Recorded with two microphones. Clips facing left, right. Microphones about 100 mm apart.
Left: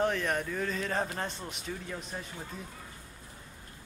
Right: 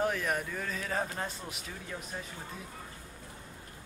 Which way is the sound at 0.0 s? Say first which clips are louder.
Left 2 dB; 5° right (ahead or behind).